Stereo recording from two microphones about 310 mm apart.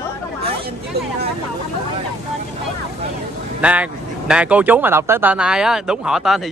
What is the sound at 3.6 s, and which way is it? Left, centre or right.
Speech, centre.